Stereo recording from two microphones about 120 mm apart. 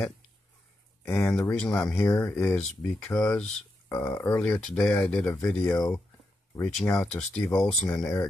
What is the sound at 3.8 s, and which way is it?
Speech, 20° left (ahead or behind).